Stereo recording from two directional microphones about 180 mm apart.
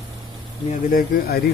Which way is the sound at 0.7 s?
50° left (ahead or behind).